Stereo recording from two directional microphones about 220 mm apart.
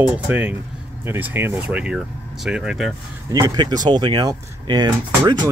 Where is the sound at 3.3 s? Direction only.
15° right (ahead or behind).